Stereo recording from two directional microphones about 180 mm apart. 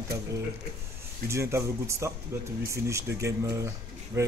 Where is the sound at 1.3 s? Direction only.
15° right (ahead or behind).